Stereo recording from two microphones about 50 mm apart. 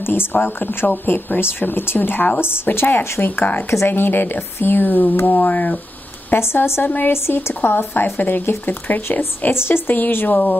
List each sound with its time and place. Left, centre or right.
0.0 s speech: left
6.3 s a woman's voice: left
9.5 s speech: left